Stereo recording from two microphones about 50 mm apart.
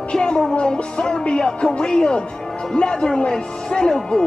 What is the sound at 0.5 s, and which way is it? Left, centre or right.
Speech, centre.